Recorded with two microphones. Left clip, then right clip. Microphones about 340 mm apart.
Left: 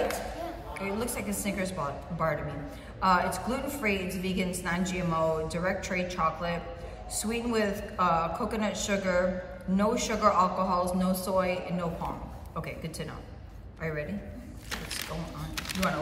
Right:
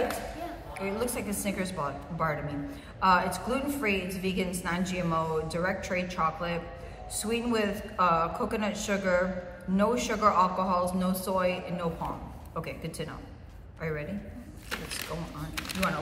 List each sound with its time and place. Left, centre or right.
0.7 s a woman's voice: centre
15.5 s speech: centre